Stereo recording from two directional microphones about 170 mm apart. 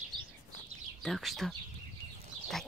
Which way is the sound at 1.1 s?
Centre (ahead or behind).